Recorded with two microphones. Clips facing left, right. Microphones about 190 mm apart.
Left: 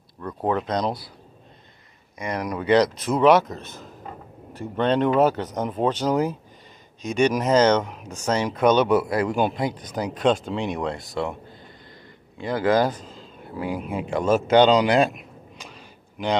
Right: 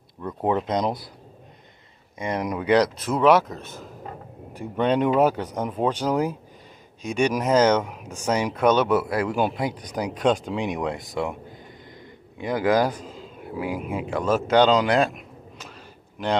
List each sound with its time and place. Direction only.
0.2 s speech: 20° right (ahead or behind)
2.1 s speech: 25° right (ahead or behind)
2.7 s speech: 10° right (ahead or behind)
12.4 s speech: 15° right (ahead or behind); by 15.0 s 5° left (ahead or behind)